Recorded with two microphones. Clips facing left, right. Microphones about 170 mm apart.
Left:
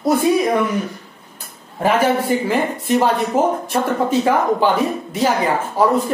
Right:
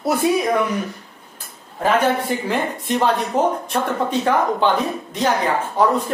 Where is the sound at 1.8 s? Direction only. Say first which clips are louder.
Left 2 dB; 5° left (ahead or behind).